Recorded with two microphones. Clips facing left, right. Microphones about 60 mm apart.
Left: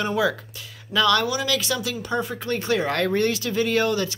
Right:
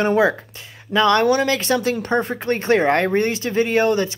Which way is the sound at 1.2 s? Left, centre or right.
Right.